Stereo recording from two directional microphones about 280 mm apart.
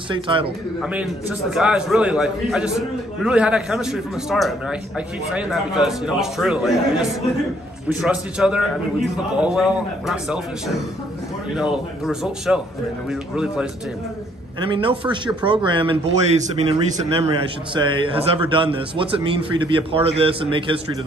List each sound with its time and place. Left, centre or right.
0.1 s speech: centre
0.7 s a man's voice: centre
11.5 s a man's voice: centre
14.7 s a man's voice: centre